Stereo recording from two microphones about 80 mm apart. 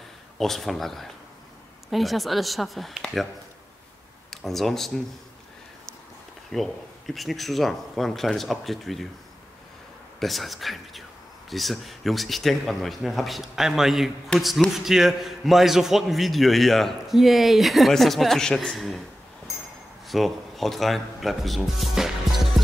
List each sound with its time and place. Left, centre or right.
0.4 s a man's voice: centre
4.3 s speech: centre
6.5 s a man's voice: centre
10.2 s a man's voice: centre
20.1 s speech: centre